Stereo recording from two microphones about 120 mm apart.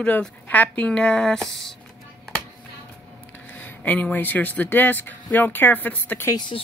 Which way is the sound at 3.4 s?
15° left (ahead or behind).